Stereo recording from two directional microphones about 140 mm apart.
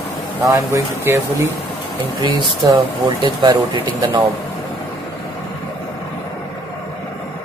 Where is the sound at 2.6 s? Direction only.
30° right (ahead or behind).